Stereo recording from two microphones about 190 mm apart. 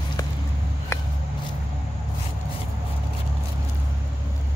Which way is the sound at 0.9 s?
15° left (ahead or behind).